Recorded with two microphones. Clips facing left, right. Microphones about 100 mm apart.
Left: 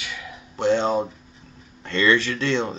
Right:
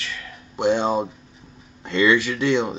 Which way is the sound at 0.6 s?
15° right (ahead or behind).